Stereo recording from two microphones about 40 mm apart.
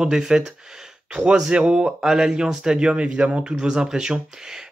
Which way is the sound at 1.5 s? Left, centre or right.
Right.